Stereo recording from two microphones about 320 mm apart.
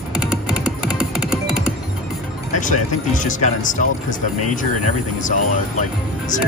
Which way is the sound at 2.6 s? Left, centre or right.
Left.